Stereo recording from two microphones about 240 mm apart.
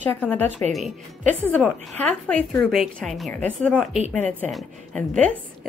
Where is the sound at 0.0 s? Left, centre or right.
Centre.